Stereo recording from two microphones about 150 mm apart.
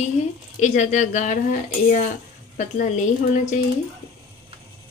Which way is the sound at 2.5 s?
55° left (ahead or behind).